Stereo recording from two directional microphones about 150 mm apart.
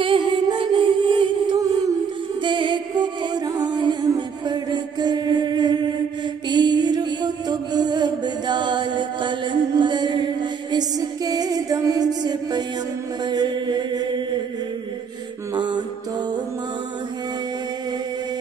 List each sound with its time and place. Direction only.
0.0 s music: 35° right (ahead or behind)
6.5 s mantra: 30° right (ahead or behind)
15.5 s music: 30° right (ahead or behind)